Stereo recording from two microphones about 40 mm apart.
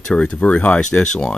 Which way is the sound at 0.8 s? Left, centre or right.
Left.